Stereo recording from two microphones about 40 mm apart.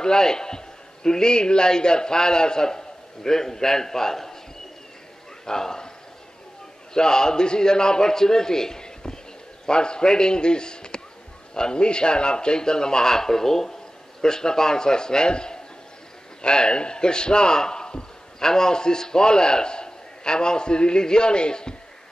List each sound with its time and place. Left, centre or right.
0.0 s a man's voice: centre
5.4 s a man's voice: centre
6.9 s a man's voice: centre